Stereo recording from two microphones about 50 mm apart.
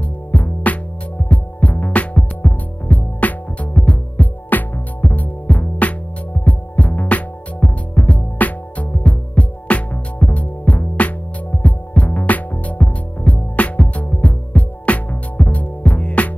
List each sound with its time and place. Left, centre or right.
0.0 s music: left